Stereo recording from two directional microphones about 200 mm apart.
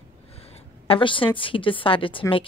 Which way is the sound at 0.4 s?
30° left (ahead or behind).